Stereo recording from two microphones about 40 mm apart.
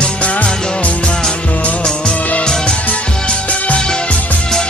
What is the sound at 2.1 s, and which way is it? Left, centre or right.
Music, left.